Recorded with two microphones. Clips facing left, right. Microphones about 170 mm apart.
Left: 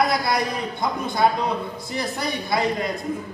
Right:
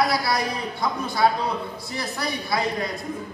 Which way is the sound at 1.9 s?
20° left (ahead or behind).